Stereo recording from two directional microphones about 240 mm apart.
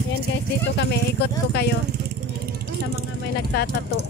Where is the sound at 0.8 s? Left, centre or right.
Left.